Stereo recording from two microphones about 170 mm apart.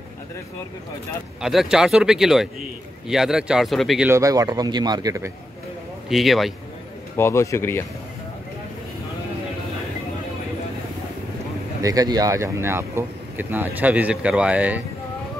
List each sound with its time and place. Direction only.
1.4 s speech: centre (ahead or behind)
4.1 s speech: 20° right (ahead or behind)
6.0 s speech: centre (ahead or behind)
7.2 s speech: 15° left (ahead or behind)
11.8 s speech: 20° right (ahead or behind)